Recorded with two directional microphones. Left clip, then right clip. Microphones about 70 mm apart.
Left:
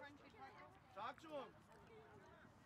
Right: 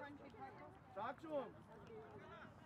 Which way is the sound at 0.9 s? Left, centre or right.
Centre.